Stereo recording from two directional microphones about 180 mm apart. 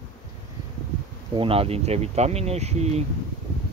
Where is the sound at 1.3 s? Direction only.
30° right (ahead or behind).